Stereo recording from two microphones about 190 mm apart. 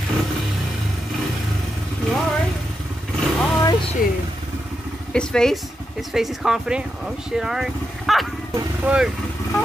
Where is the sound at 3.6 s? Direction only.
20° left (ahead or behind).